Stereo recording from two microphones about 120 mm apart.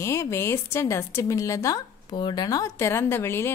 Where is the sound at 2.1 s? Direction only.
40° left (ahead or behind); by 3.5 s 20° left (ahead or behind).